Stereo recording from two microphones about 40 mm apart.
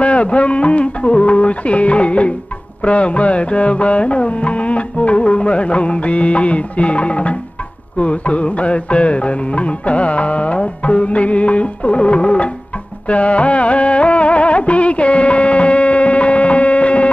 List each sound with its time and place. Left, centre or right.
0.0 s music: left